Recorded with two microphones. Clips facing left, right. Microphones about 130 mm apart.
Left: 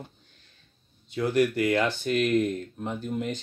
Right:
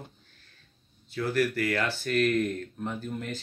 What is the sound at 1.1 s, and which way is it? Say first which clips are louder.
Speech: left 3 dB; 20° left (ahead or behind).